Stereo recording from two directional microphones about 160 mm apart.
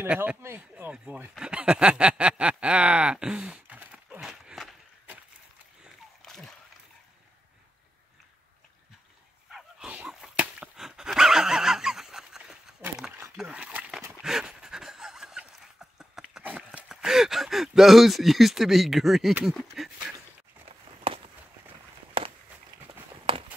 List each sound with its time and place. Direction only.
0.0 s a sound: 10° right (ahead or behind)
6.2 s splash: centre (ahead or behind)
9.5 s dog: 5° right (ahead or behind)
10.0 s a sound: 5° right (ahead or behind)
20.6 s walk: 35° right (ahead or behind)
23.3 s walk: 35° right (ahead or behind)